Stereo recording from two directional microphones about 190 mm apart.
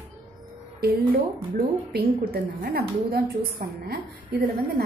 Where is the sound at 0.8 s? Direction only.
55° right (ahead or behind).